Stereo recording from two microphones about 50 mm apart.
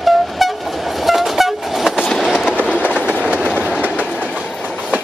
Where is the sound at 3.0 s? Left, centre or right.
Right.